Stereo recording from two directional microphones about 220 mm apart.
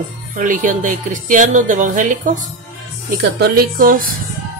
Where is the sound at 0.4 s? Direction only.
35° right (ahead or behind).